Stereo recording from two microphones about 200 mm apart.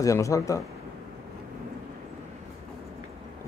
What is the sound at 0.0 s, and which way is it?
Speech, 15° left (ahead or behind).